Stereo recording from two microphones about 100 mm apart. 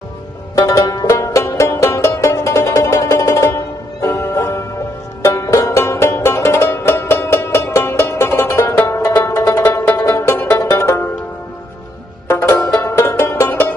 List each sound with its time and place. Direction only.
0.6 s music: 30° left (ahead or behind)
12.3 s music: 25° left (ahead or behind)